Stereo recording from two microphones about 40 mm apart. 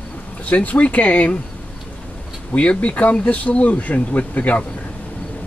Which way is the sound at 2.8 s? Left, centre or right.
Left.